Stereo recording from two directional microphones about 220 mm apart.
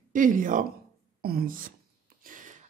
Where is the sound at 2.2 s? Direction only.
35° right (ahead or behind).